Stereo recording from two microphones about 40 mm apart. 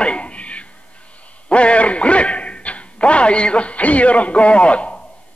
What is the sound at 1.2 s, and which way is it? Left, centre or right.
Speech, left.